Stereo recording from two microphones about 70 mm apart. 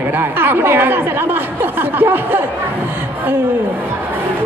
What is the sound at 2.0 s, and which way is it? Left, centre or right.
Speech, right.